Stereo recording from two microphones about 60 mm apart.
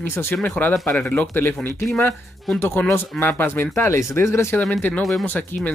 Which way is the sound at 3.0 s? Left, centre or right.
Left.